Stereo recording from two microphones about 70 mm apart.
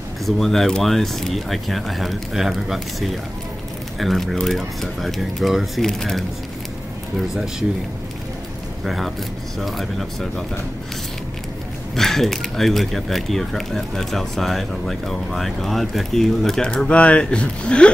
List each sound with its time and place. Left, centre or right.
0.2 s speech: centre
8.8 s speech: centre
11.9 s speech: centre